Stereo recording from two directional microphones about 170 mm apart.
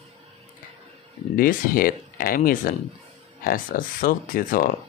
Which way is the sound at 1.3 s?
60° left (ahead or behind).